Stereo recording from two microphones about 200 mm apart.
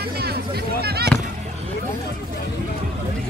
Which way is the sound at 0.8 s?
55° right (ahead or behind).